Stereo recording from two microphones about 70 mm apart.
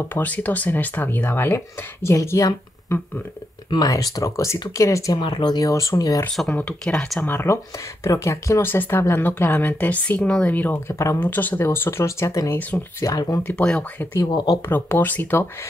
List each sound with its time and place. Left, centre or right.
0.0 s speech: left
2.1 s speech: left
3.7 s speech: left
4.7 s speech: left
5.1 s speech: left
5.7 s speech: left
6.8 s speech: centre
7.2 s speech: left
10.9 s speech: left
11.1 s speech: left
13.0 s speech: left
13.5 s speech: centre
14.2 s speech: left
14.7 s speech: left